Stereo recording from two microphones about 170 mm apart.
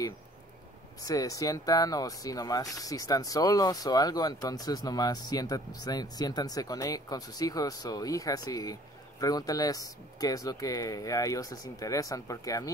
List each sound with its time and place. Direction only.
1.0 s speech: 20° left (ahead or behind)